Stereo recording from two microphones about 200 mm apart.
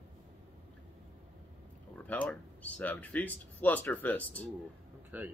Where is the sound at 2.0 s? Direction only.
10° left (ahead or behind).